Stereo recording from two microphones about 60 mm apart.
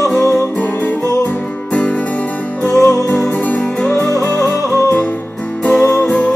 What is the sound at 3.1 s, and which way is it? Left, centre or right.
Music, left.